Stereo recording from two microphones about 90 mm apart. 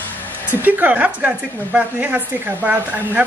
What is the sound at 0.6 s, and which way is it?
A woman's voice, 20° right (ahead or behind).